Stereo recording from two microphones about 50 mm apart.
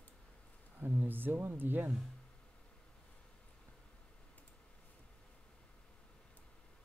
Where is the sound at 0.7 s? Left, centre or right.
Right.